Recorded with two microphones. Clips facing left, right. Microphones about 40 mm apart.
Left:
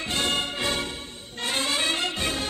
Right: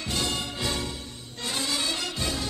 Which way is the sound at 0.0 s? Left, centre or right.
Left.